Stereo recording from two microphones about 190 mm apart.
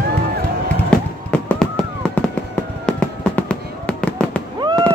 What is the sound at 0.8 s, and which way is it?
Fireworks, 5° left (ahead or behind).